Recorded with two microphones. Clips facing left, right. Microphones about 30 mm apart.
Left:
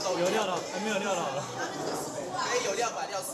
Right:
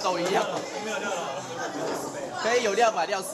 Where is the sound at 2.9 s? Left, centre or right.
Right.